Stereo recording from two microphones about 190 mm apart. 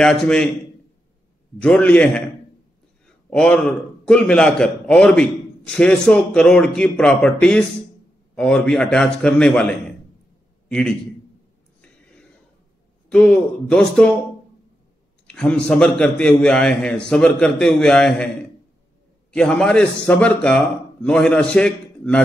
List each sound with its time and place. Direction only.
0.0 s a man's voice: 5° left (ahead or behind)
1.6 s a man's voice: 10° left (ahead or behind)
3.3 s a man's voice: 5° left (ahead or behind)
13.1 s a man's voice: 5° left (ahead or behind)
15.2 s a man's voice: 5° left (ahead or behind)
19.3 s a man's voice: 5° left (ahead or behind)